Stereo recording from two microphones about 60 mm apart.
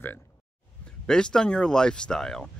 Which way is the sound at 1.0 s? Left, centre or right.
Centre.